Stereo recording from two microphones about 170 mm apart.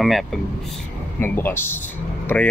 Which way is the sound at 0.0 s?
Centre (ahead or behind).